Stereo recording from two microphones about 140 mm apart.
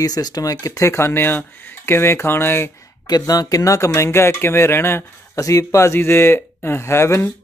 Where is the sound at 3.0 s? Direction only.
25° left (ahead or behind).